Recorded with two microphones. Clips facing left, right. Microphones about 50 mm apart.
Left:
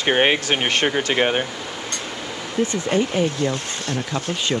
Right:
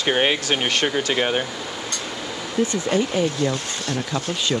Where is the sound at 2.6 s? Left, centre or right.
Left.